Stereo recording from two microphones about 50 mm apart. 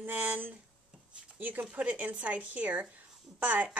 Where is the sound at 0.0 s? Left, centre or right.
Right.